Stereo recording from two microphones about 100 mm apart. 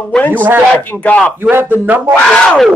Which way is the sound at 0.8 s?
15° left (ahead or behind).